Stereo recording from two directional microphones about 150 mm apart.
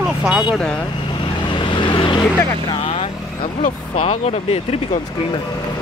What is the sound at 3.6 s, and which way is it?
Speech, 45° left (ahead or behind).